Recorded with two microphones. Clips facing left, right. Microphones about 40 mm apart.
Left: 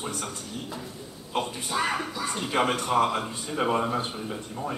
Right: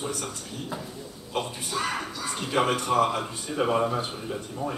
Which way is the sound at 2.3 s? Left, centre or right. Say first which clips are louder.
Right 1 dB; centre.